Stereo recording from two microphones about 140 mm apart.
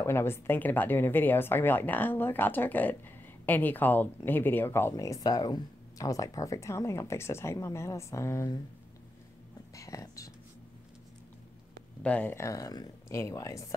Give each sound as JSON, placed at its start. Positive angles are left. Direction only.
{"t": 0.0, "sound": "speech", "side_deg": 20}
{"t": 9.8, "sound": "whispering", "side_deg": 25}
{"t": 12.0, "sound": "speech", "side_deg": 10}